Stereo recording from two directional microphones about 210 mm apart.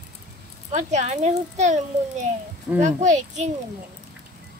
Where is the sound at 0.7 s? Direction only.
35° right (ahead or behind).